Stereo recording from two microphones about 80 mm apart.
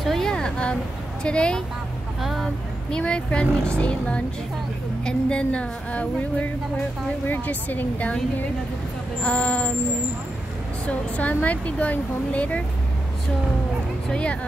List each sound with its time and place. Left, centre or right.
0.0 s a sound: centre
1.2 s a woman's voice: centre
2.2 s vehicle: centre
3.0 s a woman's voice: centre
10.9 s a woman's voice: centre
14.0 s a woman's voice: centre